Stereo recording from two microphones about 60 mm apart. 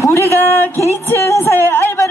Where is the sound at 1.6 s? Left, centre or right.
Left.